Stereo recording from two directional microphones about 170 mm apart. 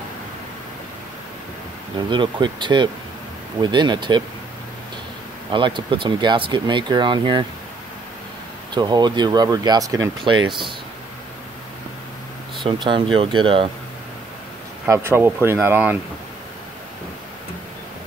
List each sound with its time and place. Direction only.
2.0 s speech: 30° right (ahead or behind)
5.5 s speech: 30° right (ahead or behind)
8.7 s speech: 25° right (ahead or behind)
12.6 s speech: 30° right (ahead or behind)
14.9 s speech: 15° right (ahead or behind)